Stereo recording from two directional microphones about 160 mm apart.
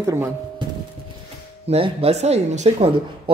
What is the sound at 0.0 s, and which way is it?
Speech, 15° right (ahead or behind).